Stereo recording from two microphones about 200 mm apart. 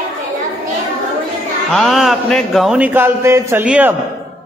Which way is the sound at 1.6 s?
Centre (ahead or behind).